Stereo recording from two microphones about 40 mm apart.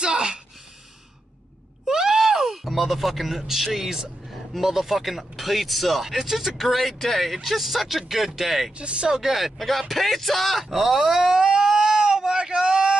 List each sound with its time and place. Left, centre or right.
0.0 s a sound: right
1.9 s speech: centre
8.7 s speech: right
9.1 s speech: centre